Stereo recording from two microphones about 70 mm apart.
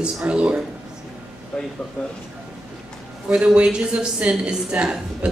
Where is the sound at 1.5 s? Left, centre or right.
Centre.